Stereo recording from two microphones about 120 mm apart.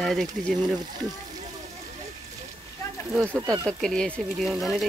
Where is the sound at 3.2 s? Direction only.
20° right (ahead or behind).